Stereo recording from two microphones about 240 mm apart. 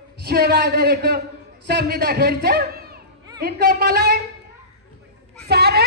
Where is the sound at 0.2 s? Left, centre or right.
Right.